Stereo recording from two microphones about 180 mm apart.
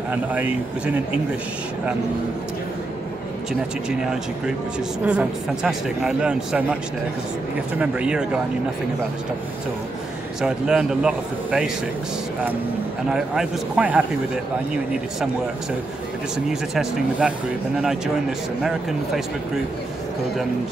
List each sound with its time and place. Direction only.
0.1 s speech: 10° right (ahead or behind)
4.0 s speech: 5° right (ahead or behind)
7.8 s speech: 5° right (ahead or behind)
10.4 s speech: 5° right (ahead or behind)
13.1 s speech: 5° right (ahead or behind)
16.4 s speech: centre (ahead or behind)
18.6 s speech: centre (ahead or behind)